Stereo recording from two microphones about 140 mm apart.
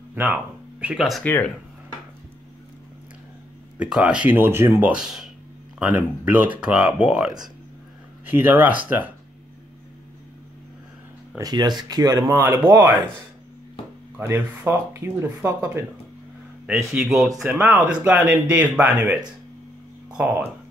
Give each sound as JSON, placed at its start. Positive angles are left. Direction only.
{"t": 0.1, "sound": "speech", "side_deg": -15}
{"t": 1.2, "sound": "speech", "side_deg": 15}
{"t": 3.7, "sound": "speech", "side_deg": -5}
{"t": 4.9, "sound": "speech", "side_deg": -5}
{"t": 8.3, "sound": "speech", "side_deg": -15}
{"t": 11.3, "sound": "speech", "side_deg": -30}
{"t": 14.1, "sound": "speech", "side_deg": -15}
{"t": 16.6, "sound": "speech", "side_deg": -5}